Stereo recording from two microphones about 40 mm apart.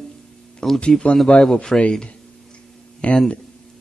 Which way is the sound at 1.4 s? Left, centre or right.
Centre.